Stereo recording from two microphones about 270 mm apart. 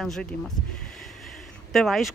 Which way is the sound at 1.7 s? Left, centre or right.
Centre.